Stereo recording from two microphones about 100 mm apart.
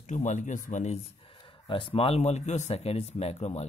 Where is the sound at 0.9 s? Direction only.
65° left (ahead or behind).